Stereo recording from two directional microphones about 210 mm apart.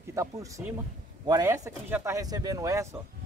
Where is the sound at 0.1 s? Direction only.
15° right (ahead or behind).